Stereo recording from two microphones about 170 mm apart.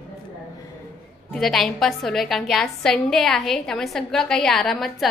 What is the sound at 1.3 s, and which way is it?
A woman's voice, centre (ahead or behind).